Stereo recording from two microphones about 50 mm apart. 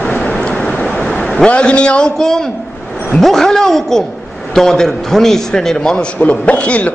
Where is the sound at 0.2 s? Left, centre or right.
Centre.